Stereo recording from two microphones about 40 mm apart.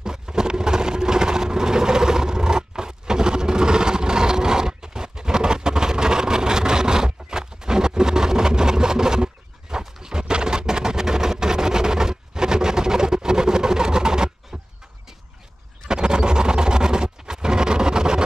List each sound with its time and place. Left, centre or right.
0.0 s vehicle: centre
14.5 s a sound: right
15.9 s vehicle: right